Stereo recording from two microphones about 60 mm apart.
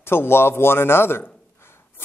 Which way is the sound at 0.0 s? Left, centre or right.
Left.